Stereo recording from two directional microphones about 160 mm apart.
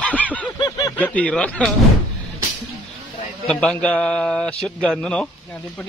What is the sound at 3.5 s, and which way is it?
A man's voice, 5° left (ahead or behind).